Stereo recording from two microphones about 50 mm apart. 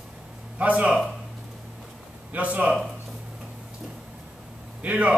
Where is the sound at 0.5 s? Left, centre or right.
Right.